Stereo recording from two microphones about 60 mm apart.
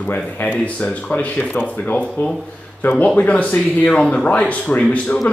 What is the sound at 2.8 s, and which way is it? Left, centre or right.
Speech, left.